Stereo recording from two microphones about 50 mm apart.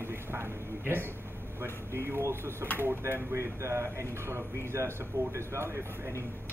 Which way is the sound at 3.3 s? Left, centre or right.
Right.